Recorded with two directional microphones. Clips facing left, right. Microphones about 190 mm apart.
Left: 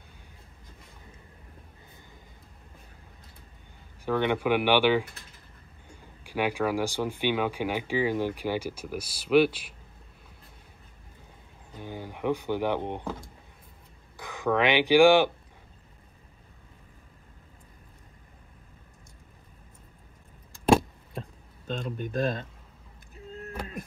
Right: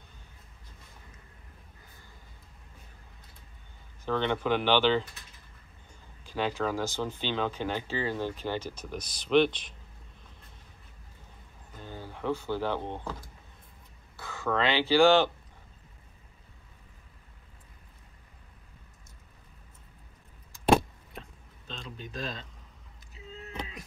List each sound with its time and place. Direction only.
4.0 s speech: 10° left (ahead or behind)
6.2 s speech: 10° left (ahead or behind)
11.7 s speech: 15° left (ahead or behind)
14.1 s speech: 15° left (ahead or behind)
21.6 s speech: 50° left (ahead or behind)
23.1 s a sound: 50° left (ahead or behind)